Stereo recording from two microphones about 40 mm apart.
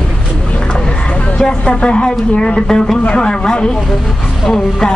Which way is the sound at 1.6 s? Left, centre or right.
Left.